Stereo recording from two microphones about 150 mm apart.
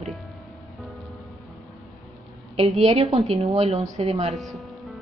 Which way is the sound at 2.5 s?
40° right (ahead or behind).